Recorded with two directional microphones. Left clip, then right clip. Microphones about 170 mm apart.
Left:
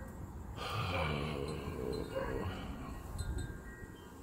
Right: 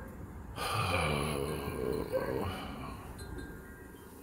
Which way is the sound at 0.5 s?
20° right (ahead or behind).